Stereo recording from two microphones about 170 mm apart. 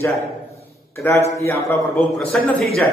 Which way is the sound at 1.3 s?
15° left (ahead or behind).